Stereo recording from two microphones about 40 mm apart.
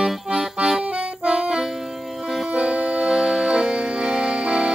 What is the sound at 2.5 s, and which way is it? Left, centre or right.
Accordion, right.